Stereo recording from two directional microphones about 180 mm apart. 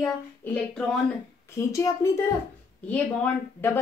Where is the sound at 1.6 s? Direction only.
15° left (ahead or behind).